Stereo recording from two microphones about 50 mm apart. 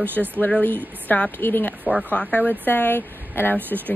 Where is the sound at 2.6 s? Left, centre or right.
Left.